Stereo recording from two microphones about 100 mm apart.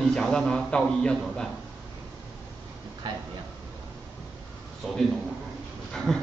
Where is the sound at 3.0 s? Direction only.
50° right (ahead or behind).